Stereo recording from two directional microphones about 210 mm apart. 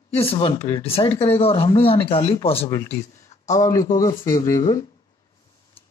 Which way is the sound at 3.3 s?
35° left (ahead or behind).